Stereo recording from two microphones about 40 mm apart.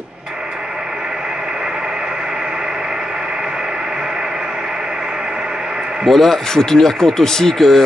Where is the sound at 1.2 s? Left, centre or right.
Centre.